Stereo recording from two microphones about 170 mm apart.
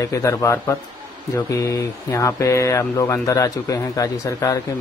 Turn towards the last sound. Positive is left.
turn(degrees=20)  # may be behind; listen again after turning